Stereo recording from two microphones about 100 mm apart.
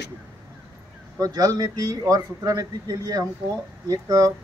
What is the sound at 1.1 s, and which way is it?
A man's voice, 40° right (ahead or behind).